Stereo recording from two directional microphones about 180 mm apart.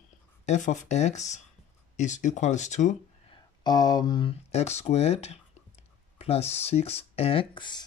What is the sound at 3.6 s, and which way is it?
Speech, 20° left (ahead or behind).